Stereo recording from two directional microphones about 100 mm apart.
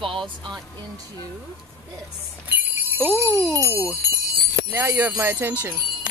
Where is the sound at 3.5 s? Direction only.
30° right (ahead or behind).